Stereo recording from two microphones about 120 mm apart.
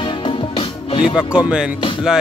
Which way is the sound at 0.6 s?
45° left (ahead or behind).